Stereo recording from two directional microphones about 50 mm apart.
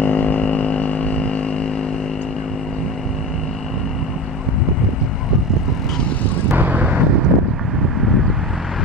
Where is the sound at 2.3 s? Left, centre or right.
Centre.